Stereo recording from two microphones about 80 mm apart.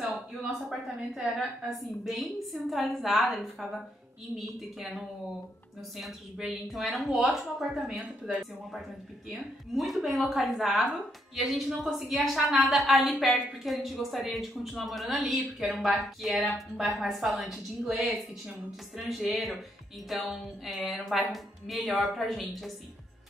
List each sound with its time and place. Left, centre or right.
0.0 s speech: centre